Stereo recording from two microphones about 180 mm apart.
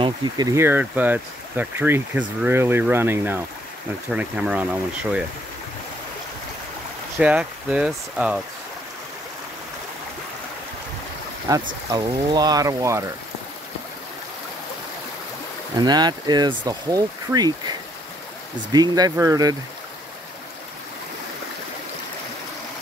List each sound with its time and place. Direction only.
0.0 s speech: 25° right (ahead or behind); by 5.2 s 5° right (ahead or behind)
7.2 s speech: 5° right (ahead or behind)
11.5 s speech: 20° right (ahead or behind)
15.8 s speech: 25° right (ahead or behind)
18.7 s speech: 20° right (ahead or behind)